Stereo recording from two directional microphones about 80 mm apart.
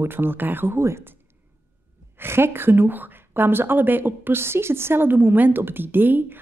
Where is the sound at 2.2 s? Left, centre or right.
Right.